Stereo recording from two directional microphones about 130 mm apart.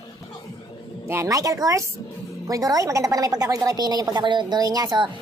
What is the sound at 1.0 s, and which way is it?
A woman's voice, 20° right (ahead or behind).